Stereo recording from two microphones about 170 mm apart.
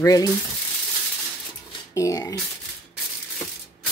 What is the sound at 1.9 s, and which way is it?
Speech, 20° left (ahead or behind).